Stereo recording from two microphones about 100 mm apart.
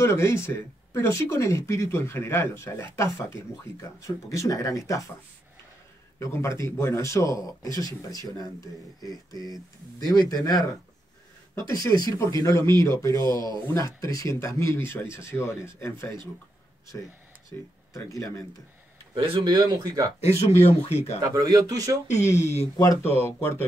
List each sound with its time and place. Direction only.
0.0 s speech: 25° left (ahead or behind)
6.1 s speech: 30° left (ahead or behind)
9.1 s speech: 40° left (ahead or behind)
11.7 s speech: 40° left (ahead or behind)
17.5 s speech: 35° left (ahead or behind)
19.4 s speech: 45° right (ahead or behind)
20.6 s speech: 90° left
21.2 s speech: 35° right (ahead or behind)
22.3 s speech: 25° left (ahead or behind)